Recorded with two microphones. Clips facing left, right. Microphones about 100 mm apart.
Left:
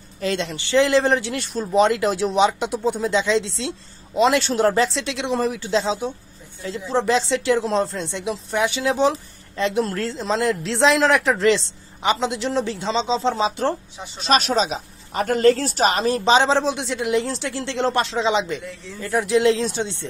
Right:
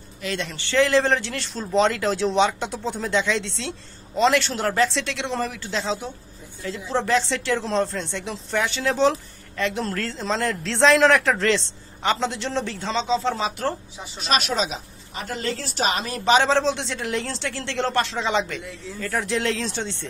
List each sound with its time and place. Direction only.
0.2 s speech: 35° left (ahead or behind)
0.5 s a woman's voice: 20° left (ahead or behind)
14.2 s speech: 35° left (ahead or behind)
15.1 s a woman's voice: 50° left (ahead or behind); by 20.1 s 15° left (ahead or behind)